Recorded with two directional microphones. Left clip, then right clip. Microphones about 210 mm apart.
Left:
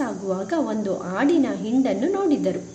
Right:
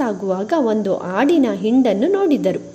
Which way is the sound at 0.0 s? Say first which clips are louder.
Right 6 dB; 35° right (ahead or behind).